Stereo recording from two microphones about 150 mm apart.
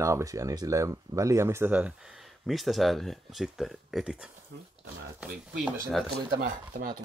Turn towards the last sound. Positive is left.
turn(degrees=-65)  # may be behind; listen again after turning